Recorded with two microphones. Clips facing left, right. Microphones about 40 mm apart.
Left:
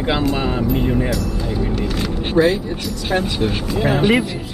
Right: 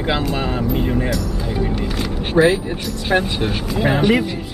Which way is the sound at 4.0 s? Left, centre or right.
Centre.